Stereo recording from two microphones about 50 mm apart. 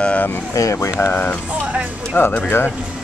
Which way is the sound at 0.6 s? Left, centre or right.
Left.